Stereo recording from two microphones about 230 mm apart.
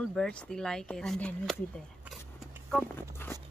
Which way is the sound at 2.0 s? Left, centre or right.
Centre.